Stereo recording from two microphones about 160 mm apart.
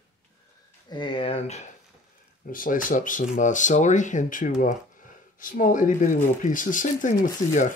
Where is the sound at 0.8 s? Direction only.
30° left (ahead or behind).